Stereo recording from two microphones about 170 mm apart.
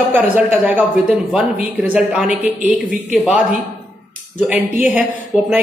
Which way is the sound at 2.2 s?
45° left (ahead or behind).